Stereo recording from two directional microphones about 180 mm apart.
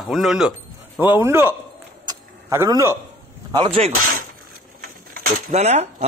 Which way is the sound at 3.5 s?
35° right (ahead or behind).